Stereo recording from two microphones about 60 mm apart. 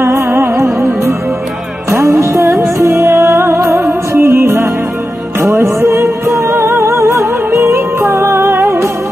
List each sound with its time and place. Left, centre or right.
0.0 s music: right
0.6 s music: right